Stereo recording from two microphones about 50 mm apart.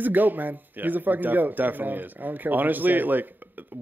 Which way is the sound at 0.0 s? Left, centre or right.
Right.